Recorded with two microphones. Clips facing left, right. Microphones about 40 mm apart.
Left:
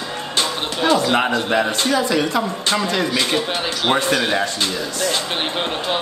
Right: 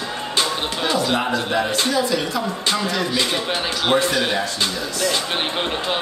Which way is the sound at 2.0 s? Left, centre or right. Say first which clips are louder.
Left 3 dB; left.